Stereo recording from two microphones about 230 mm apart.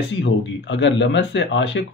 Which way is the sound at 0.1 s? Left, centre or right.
Left.